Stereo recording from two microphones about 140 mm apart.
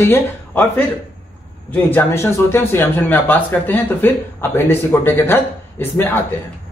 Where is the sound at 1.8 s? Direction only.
15° left (ahead or behind).